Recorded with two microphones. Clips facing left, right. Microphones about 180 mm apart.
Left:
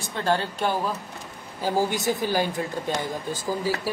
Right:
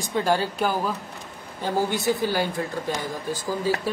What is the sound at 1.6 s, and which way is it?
A woman's voice, 15° left (ahead or behind).